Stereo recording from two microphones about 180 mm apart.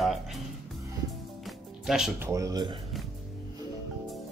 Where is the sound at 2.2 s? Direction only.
20° right (ahead or behind).